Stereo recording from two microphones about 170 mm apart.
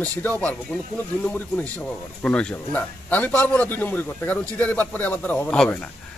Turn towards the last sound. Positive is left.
turn(degrees=10)  # may be behind; listen again after turning